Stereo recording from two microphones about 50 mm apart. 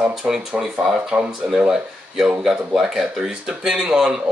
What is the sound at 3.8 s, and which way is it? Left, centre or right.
Speech, right.